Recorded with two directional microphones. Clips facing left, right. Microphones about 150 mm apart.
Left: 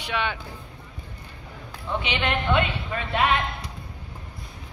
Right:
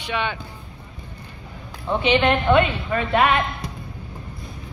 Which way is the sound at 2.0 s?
40° right (ahead or behind).